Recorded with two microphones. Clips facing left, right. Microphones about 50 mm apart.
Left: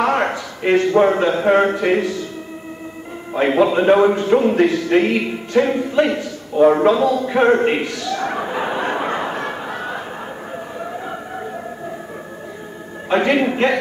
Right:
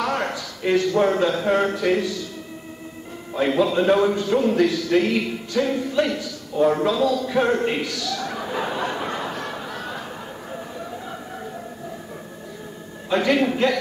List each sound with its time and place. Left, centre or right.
0.0 s a man's voice: left
3.3 s a man's voice: left
10.8 s a sound: left
13.1 s a man's voice: left